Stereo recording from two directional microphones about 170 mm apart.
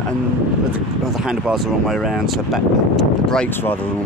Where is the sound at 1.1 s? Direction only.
5° right (ahead or behind).